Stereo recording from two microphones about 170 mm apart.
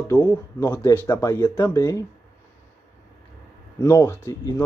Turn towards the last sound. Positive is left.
turn(degrees=15)  # may be behind; listen again after turning